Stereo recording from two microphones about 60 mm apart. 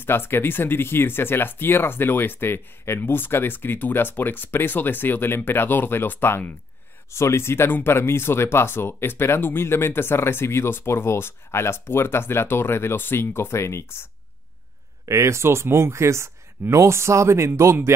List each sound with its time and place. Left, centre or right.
0.0 s speech: left
7.1 s speech: left
15.0 s speech: right